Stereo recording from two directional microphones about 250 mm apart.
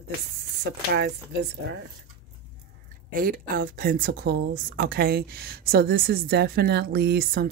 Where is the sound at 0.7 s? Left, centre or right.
Right.